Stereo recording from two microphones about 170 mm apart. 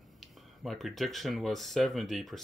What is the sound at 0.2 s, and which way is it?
Speech, centre (ahead or behind).